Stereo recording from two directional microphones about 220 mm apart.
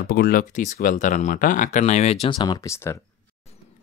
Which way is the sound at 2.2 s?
20° left (ahead or behind).